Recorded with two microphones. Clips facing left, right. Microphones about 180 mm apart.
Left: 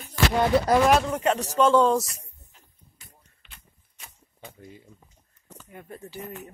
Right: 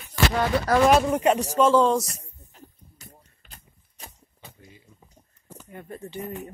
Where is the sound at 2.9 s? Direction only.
40° right (ahead or behind).